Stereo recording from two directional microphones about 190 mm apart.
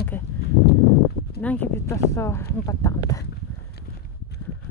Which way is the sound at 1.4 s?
10° left (ahead or behind).